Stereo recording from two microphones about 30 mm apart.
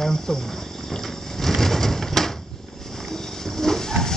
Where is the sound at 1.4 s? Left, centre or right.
Centre.